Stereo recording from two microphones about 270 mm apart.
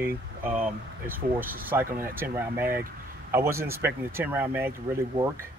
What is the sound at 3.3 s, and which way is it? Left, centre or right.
Speech, centre.